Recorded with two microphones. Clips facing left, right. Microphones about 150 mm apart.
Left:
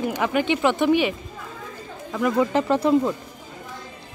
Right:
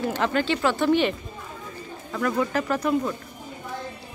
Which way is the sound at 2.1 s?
20° left (ahead or behind).